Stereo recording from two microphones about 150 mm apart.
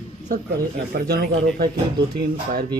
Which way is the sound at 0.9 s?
90° right.